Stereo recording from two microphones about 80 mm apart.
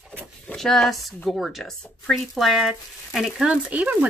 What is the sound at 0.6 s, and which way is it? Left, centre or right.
A woman's voice, centre.